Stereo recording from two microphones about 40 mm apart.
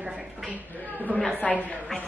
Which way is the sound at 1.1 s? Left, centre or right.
Right.